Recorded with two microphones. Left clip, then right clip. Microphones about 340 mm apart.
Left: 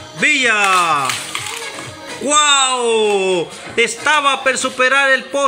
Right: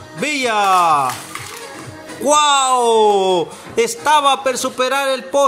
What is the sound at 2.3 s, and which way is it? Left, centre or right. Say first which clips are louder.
Speech: right 1 dB; centre.